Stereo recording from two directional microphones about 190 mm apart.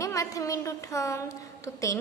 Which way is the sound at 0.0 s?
15° left (ahead or behind).